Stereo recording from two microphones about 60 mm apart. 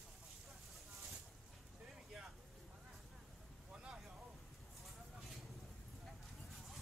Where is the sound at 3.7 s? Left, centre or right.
Centre.